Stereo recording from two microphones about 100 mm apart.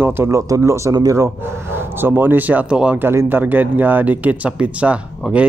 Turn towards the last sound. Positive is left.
turn(degrees=-10)  # may be behind; listen again after turning